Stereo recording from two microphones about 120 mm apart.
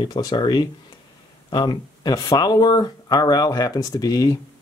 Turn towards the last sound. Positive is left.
turn(degrees=30)  # may be behind; listen again after turning